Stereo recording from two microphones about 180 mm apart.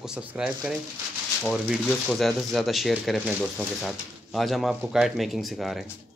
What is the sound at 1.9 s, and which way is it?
Speech, centre (ahead or behind).